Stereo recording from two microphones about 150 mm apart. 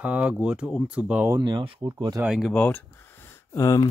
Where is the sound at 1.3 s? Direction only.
30° right (ahead or behind).